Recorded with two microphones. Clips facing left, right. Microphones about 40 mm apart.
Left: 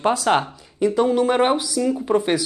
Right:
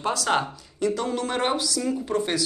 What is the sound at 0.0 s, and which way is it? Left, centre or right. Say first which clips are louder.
Speech: left 5 dB; left.